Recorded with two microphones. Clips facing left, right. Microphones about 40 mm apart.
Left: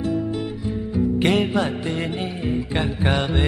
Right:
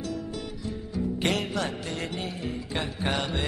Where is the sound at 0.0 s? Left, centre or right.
Left.